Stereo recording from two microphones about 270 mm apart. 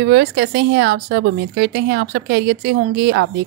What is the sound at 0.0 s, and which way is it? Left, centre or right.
A woman's voice, right.